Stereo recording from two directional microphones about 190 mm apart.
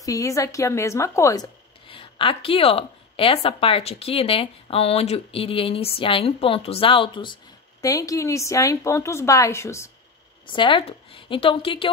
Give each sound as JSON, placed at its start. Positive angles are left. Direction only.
{"t": 0.0, "sound": "a woman's voice", "side_deg": 15}
{"t": 10.4, "sound": "a woman's voice", "side_deg": 25}